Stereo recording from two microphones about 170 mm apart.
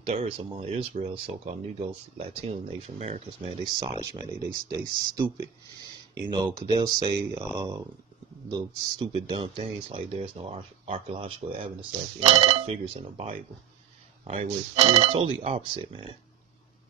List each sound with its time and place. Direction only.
0.0 s speech: 40° right (ahead or behind); by 5.5 s 25° right (ahead or behind)
6.7 s speech: 25° right (ahead or behind)